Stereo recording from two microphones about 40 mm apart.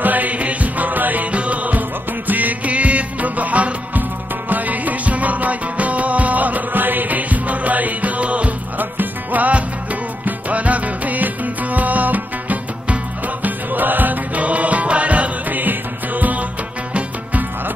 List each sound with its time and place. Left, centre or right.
0.0 s music: right
1.3 s music: right
8.7 s music: right
15.6 s music: right